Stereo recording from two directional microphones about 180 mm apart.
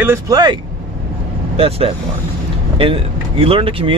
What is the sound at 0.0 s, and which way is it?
Speech, 15° right (ahead or behind).